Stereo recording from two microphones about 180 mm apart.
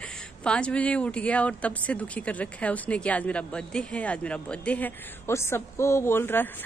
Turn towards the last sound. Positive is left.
turn(degrees=10)  # may be behind; listen again after turning